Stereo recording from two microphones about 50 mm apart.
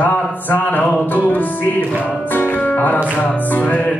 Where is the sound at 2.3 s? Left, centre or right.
Left.